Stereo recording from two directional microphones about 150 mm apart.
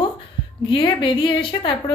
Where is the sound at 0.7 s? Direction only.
35° left (ahead or behind).